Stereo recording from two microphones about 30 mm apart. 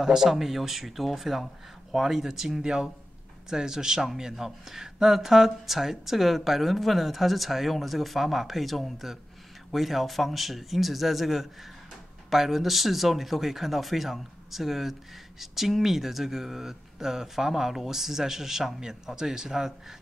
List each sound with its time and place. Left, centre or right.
0.0 s speech: centre
2.6 s speech: right